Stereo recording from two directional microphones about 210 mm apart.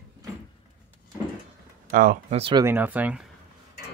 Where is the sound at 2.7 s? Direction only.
10° right (ahead or behind).